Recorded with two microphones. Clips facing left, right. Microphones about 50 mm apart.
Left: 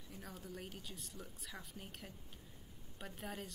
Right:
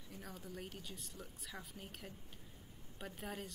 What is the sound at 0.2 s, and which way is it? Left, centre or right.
Speech, centre.